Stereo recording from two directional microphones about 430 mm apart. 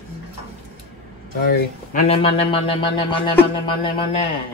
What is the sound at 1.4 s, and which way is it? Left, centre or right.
Speech, centre.